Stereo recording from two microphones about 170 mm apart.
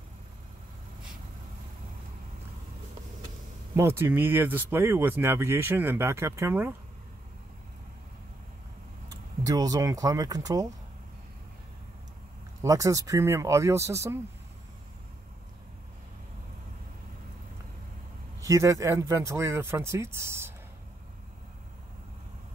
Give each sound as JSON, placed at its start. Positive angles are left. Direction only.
{"t": 3.7, "sound": "speech", "side_deg": -15}
{"t": 9.4, "sound": "speech", "side_deg": -20}
{"t": 12.6, "sound": "speech", "side_deg": -20}
{"t": 18.5, "sound": "speech", "side_deg": -20}